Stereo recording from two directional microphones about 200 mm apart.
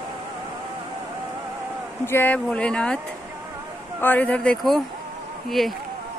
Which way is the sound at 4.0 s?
10° left (ahead or behind).